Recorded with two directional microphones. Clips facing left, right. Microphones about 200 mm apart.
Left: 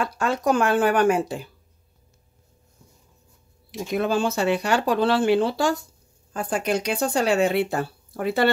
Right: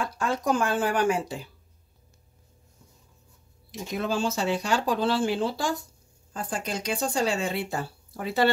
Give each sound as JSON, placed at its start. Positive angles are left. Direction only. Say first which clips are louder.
{"t": 0.0, "sound": "speech", "louder": "left 4 dB", "side_deg": 70}
{"t": 3.7, "sound": "speech", "louder": "left 5 dB", "side_deg": 60}